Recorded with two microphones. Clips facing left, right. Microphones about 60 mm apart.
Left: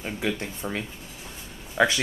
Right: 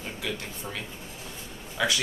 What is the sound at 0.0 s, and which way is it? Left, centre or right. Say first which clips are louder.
Speech: left 5 dB; left.